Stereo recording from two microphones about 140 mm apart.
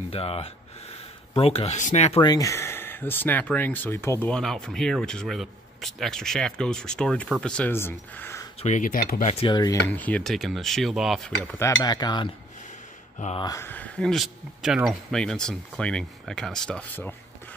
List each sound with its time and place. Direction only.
0.1 s speech: 45° left (ahead or behind)
2.2 s speech: 25° left (ahead or behind)
4.3 s speech: 5° left (ahead or behind)
8.5 s speech: 55° left (ahead or behind); by 9.3 s 75° left (ahead or behind)
9.3 s speech: 40° left (ahead or behind)
9.9 s speech: 10° left (ahead or behind)
11.5 s cutlery: 25° left (ahead or behind)
13.4 s cutlery: 25° left (ahead or behind)
13.7 s speech: 10° left (ahead or behind)